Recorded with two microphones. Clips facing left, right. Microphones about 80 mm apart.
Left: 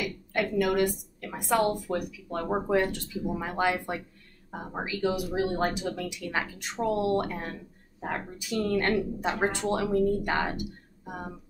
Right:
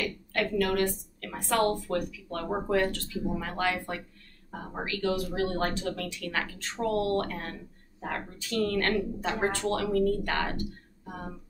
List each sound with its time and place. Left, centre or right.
0.0 s a woman's voice: centre